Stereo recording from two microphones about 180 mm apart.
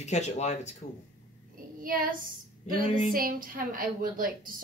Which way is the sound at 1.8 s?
50° right (ahead or behind).